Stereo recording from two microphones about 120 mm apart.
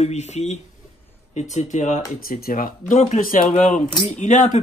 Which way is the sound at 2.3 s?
90° left.